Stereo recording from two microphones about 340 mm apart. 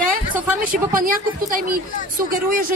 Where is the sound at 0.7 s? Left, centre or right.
Right.